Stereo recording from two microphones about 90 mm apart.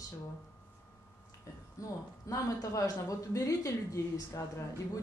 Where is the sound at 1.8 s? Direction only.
40° left (ahead or behind).